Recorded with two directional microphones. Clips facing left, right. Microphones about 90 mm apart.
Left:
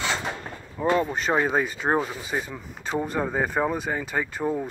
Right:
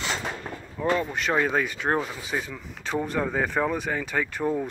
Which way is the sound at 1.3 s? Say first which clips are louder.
Even; 20° left (ahead or behind).